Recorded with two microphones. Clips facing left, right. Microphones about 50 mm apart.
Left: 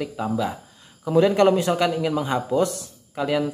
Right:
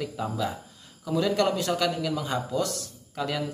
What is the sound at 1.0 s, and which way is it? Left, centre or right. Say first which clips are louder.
A man's voice: left 7 dB; left.